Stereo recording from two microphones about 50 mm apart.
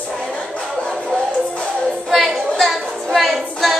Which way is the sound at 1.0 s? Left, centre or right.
Centre.